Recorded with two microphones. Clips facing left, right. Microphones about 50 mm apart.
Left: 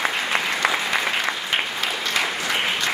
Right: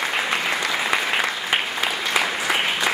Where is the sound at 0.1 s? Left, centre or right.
Centre.